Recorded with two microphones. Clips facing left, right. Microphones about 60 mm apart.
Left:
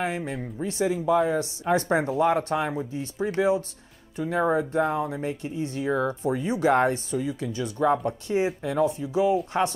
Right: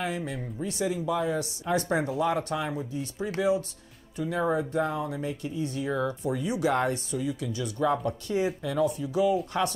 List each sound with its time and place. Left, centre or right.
0.0 s speech: left